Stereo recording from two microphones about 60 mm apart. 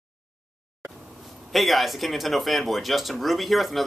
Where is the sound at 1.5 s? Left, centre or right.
Centre.